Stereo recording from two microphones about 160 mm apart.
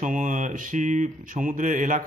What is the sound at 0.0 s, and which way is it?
Speech, 55° right (ahead or behind).